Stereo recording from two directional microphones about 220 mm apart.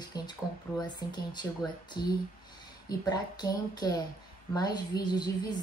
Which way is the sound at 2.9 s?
20° left (ahead or behind).